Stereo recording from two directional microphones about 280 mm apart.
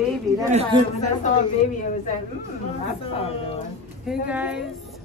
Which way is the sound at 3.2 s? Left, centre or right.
Left.